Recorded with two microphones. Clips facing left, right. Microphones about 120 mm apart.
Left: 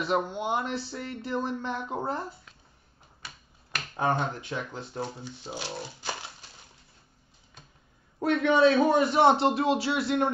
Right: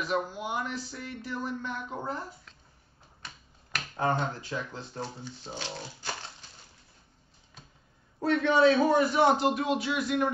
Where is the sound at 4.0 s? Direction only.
15° left (ahead or behind).